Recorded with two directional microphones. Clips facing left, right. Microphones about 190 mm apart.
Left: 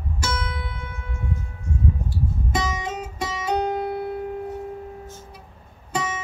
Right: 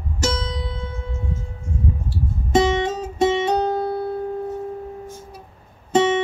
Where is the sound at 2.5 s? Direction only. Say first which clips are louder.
Right 12 dB; 30° right (ahead or behind).